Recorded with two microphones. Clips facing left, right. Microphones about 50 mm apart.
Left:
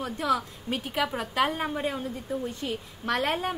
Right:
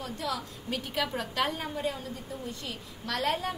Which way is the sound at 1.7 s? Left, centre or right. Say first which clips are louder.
Left 3 dB; left.